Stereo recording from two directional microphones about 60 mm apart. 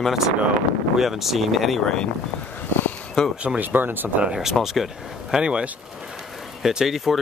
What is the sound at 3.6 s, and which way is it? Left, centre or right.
Speech, right.